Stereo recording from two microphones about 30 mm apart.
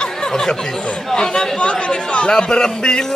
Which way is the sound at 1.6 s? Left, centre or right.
Left.